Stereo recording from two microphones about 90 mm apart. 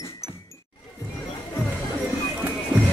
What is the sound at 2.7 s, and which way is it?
Music, 15° right (ahead or behind).